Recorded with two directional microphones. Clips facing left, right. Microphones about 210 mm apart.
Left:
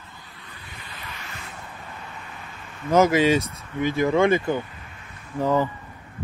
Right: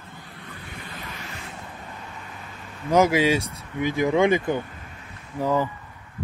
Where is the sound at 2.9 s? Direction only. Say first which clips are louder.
Left 1 dB; 10° right (ahead or behind).